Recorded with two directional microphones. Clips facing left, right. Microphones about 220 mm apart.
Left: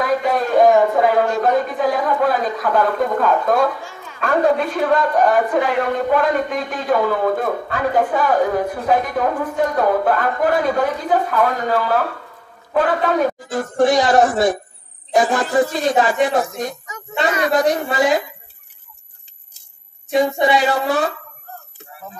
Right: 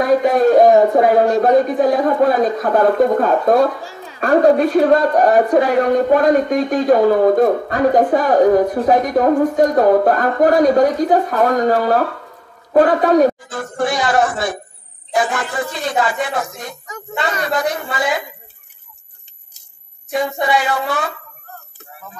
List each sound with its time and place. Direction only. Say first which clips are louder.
0.0 s a woman's voice: right 6 dB; 45° right (ahead or behind)
13.4 s speech: left 4 dB; 40° left (ahead or behind)